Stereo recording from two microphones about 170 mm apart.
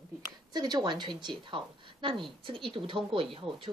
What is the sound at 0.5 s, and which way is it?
A woman's voice, 25° right (ahead or behind).